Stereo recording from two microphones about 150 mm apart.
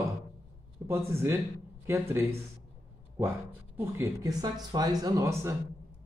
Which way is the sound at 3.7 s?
15° right (ahead or behind).